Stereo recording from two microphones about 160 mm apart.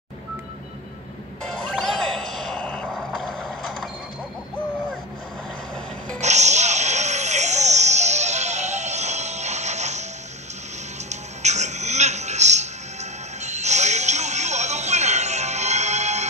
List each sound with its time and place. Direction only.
1.4 s music: 5° left (ahead or behind)
6.2 s music: 45° right (ahead or behind)
11.1 s music: 45° right (ahead or behind)